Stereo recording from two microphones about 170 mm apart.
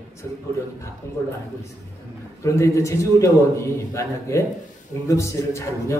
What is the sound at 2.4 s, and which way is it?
A man's voice, 20° left (ahead or behind).